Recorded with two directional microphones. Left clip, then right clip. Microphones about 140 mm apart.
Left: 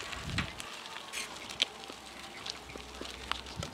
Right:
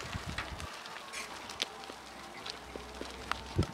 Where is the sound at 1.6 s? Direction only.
15° left (ahead or behind).